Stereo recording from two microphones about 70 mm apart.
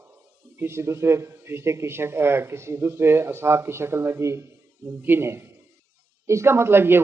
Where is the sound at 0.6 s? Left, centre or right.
Right.